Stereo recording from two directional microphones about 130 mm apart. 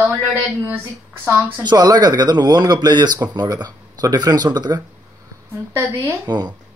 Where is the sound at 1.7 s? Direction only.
30° right (ahead or behind).